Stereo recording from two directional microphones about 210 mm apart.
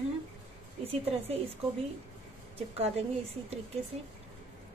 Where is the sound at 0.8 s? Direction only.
30° right (ahead or behind).